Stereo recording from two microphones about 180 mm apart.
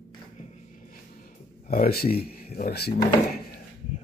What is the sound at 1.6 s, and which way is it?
Speech, 55° left (ahead or behind).